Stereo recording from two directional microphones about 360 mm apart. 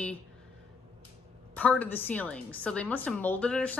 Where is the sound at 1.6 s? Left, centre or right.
Centre.